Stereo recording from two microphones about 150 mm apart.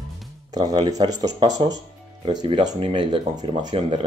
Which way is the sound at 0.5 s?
25° right (ahead or behind).